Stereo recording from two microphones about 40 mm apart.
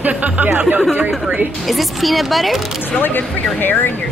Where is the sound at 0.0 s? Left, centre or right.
Right.